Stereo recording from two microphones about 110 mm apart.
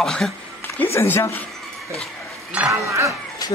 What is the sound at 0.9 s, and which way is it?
Speech, 25° left (ahead or behind).